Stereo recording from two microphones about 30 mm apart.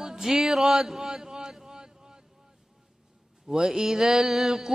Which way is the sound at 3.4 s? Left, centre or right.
Centre.